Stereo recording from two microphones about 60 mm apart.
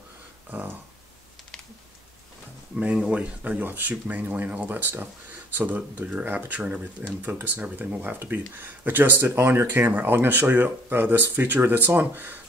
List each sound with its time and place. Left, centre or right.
0.5 s speech: right
2.8 s speech: centre
7.2 s speech: right
7.6 s speech: right
8.0 s speech: right